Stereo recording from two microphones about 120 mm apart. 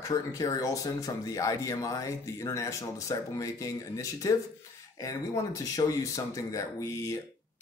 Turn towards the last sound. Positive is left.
turn(degrees=25)  # may be behind; listen again after turning